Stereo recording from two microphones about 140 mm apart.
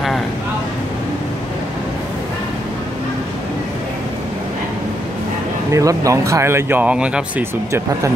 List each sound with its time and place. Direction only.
5.7 s speech: 25° right (ahead or behind)